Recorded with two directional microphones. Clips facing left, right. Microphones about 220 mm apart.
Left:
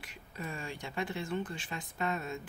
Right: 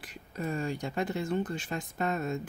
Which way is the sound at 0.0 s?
40° right (ahead or behind).